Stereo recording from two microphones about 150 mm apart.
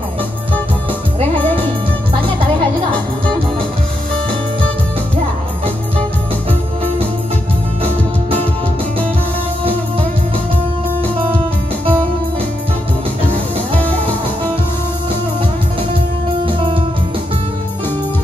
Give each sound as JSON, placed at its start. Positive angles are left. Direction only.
{"t": 7.8, "sound": "music", "side_deg": -40}
{"t": 11.0, "sound": "music", "side_deg": -40}
{"t": 13.3, "sound": "music", "side_deg": -40}
{"t": 16.4, "sound": "music", "side_deg": -35}